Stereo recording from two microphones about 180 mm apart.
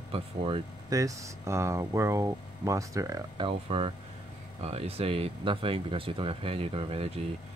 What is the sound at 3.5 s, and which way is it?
Speech, 30° right (ahead or behind).